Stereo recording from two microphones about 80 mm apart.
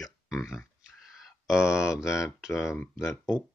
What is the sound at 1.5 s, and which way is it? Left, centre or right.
Speech, centre.